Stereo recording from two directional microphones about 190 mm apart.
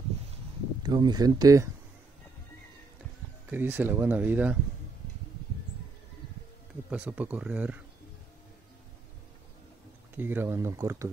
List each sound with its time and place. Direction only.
0.8 s speech: 20° right (ahead or behind)
3.4 s speech: 10° right (ahead or behind)
6.9 s speech: 5° right (ahead or behind)
10.1 s speech: 10° right (ahead or behind)